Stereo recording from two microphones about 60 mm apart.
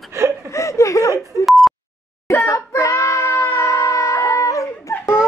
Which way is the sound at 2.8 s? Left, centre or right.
Left.